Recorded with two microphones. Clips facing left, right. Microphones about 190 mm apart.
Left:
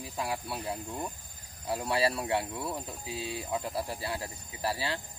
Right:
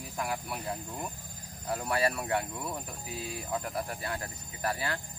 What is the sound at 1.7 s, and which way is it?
Speech, 25° left (ahead or behind).